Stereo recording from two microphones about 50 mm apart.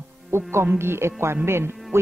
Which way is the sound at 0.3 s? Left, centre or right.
Right.